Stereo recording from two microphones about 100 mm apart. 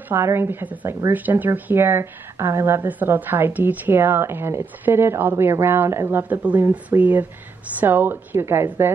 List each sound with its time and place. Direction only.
0.1 s speech: 25° right (ahead or behind)